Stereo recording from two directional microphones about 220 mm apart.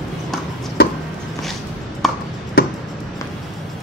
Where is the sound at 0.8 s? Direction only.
45° left (ahead or behind).